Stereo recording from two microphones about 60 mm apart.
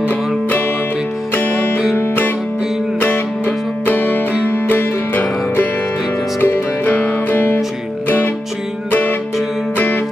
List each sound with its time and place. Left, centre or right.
0.0 s music: left
9.8 s music: left